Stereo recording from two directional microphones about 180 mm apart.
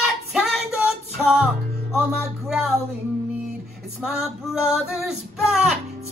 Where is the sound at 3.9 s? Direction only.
Centre (ahead or behind).